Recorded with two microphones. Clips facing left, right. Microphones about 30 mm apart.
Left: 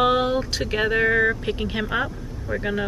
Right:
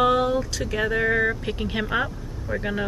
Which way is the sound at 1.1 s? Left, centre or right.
Centre.